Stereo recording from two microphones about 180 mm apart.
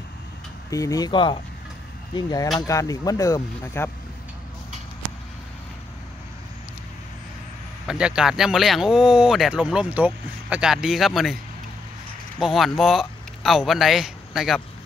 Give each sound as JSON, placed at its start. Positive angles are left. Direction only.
{"t": 0.7, "sound": "speech", "side_deg": 20}
{"t": 7.8, "sound": "speech", "side_deg": -5}
{"t": 12.4, "sound": "speech", "side_deg": 0}